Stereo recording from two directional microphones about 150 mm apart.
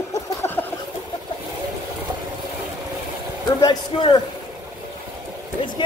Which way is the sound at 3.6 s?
30° left (ahead or behind).